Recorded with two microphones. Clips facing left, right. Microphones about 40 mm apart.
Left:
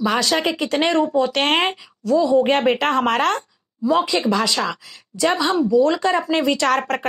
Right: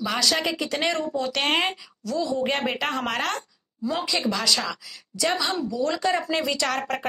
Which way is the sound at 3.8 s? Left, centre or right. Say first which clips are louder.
Left 7 dB; left.